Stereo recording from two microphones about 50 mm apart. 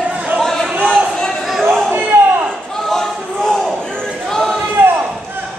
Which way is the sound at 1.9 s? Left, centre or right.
Right.